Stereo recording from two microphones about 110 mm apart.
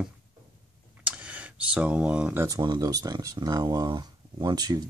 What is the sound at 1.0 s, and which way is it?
Computer keyboard, 10° right (ahead or behind).